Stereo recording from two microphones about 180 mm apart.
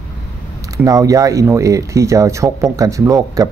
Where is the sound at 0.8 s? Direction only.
20° right (ahead or behind).